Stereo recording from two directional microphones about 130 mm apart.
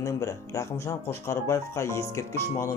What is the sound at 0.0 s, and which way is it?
Speech, 25° left (ahead or behind).